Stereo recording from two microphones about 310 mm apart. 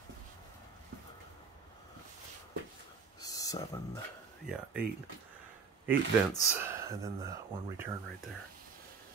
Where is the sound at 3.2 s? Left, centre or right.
Centre.